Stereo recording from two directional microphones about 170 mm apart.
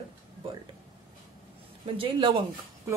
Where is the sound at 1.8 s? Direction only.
30° right (ahead or behind).